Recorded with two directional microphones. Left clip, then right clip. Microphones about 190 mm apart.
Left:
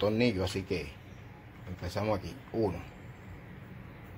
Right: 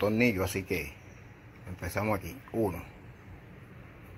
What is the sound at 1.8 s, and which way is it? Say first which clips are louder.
Speech: right 1 dB; 20° right (ahead or behind).